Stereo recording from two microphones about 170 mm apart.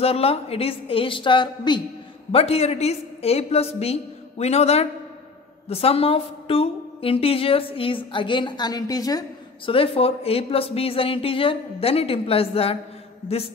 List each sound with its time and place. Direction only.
0.0 s a woman's voice: 35° left (ahead or behind)
9.7 s a woman's voice: 35° left (ahead or behind)